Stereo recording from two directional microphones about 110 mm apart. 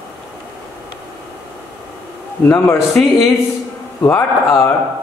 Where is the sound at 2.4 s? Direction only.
20° left (ahead or behind).